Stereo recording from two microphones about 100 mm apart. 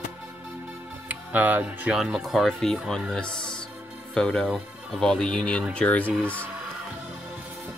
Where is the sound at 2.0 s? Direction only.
5° right (ahead or behind); by 6.1 s 15° left (ahead or behind).